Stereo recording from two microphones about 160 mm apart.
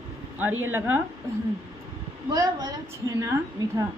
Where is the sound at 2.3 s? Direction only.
25° right (ahead or behind).